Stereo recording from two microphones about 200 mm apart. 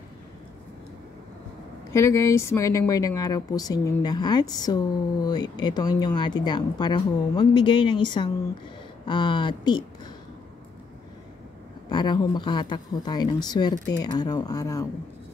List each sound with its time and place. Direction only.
1.9 s a woman's voice: 15° left (ahead or behind)
11.9 s a woman's voice: 20° left (ahead or behind)